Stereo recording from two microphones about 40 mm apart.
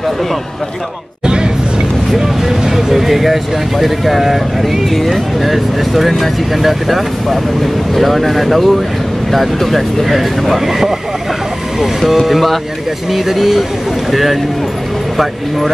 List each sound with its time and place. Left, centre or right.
1.2 s hubbub: right
2.1 s speech: centre